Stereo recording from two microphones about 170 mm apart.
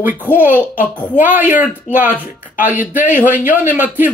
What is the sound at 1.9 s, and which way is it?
Speech, 45° left (ahead or behind).